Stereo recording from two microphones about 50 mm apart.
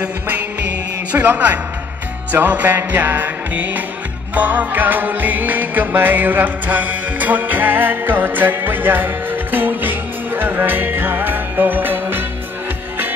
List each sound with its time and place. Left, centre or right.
0.0 s music: right